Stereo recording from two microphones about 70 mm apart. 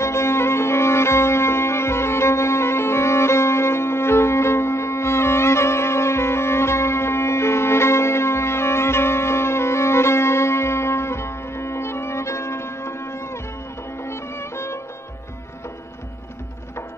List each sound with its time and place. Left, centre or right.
0.0 s music: left